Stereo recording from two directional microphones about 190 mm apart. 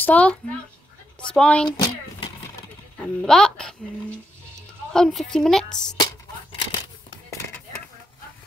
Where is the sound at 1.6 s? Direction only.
25° left (ahead or behind).